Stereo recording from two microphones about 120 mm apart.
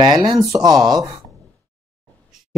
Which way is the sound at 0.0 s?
35° right (ahead or behind).